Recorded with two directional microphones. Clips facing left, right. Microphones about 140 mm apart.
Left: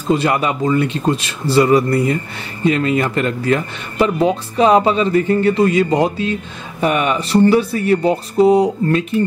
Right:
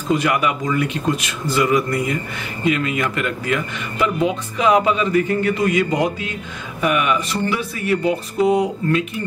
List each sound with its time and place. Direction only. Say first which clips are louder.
0.1 s speech: left 3 dB; 30° left (ahead or behind)